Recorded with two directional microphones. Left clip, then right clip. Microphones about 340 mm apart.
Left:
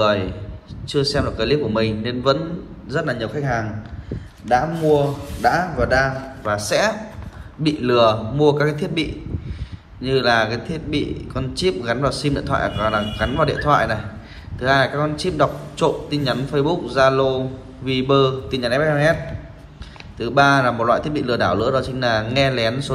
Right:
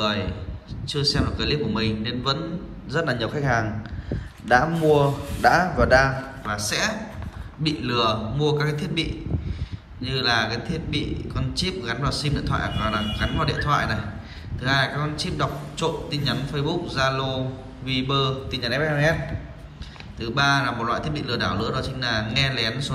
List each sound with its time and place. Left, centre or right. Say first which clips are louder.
0.0 s a man's voice: left 7 dB; centre
4.9 s speech: left 2 dB; centre
6.4 s a man's voice: left 7 dB; centre
20.2 s a man's voice: left 6 dB; centre